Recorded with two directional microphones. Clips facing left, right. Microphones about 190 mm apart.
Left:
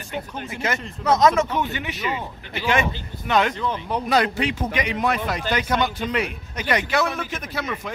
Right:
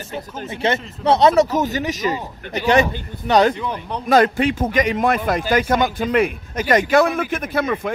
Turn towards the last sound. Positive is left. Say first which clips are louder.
# right 8 dB
turn(degrees=-55)  # may be behind; listen again after turning